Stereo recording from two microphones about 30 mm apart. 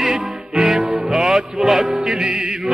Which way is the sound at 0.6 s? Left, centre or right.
Centre.